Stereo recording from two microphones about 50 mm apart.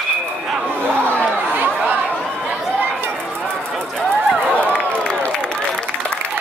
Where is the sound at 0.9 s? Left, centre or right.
Left.